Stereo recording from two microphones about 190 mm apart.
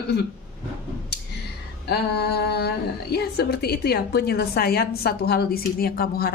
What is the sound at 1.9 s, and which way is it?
A woman's voice, 55° left (ahead or behind).